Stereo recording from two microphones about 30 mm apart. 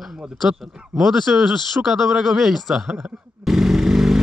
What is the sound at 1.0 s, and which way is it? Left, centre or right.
A man's voice, centre.